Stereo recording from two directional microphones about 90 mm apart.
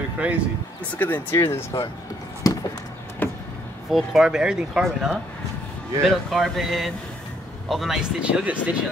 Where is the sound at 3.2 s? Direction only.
25° left (ahead or behind).